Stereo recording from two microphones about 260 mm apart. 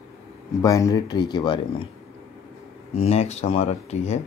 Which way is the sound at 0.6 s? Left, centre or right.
Centre.